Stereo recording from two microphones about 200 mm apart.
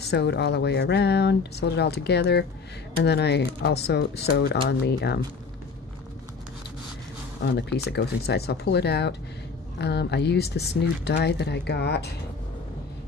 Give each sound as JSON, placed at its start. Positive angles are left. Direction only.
{"t": 0.0, "sound": "speech", "side_deg": 55}
{"t": 7.4, "sound": "speech", "side_deg": 55}